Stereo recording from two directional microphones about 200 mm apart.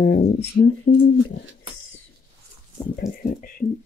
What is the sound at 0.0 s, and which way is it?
Speech, 55° left (ahead or behind).